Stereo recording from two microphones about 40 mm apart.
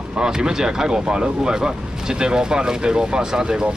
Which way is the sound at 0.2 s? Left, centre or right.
Centre.